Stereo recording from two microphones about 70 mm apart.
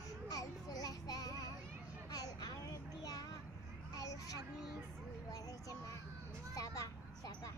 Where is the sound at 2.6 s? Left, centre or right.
Left.